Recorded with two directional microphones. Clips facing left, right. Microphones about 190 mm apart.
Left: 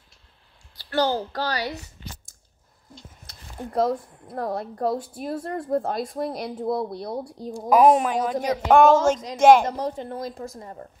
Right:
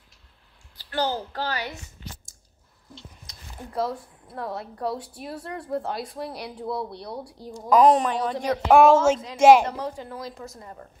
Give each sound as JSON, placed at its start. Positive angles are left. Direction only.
{"t": 0.8, "sound": "a child's voice", "side_deg": 40}
{"t": 2.9, "sound": "speech", "side_deg": 45}
{"t": 7.3, "sound": "a woman's voice", "side_deg": 20}
{"t": 9.7, "sound": "a child's voice", "side_deg": 40}